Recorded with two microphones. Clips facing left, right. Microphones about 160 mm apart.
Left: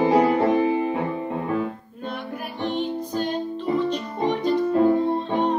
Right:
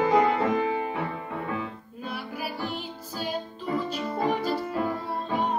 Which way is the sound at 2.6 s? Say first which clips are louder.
Left 9 dB; 5° right (ahead or behind).